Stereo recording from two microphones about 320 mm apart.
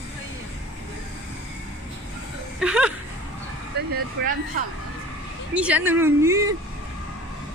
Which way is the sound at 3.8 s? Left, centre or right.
Right.